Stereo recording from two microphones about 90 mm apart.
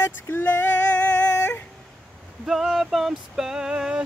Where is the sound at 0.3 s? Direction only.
20° left (ahead or behind).